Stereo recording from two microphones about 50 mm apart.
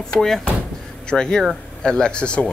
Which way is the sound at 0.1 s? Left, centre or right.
Centre.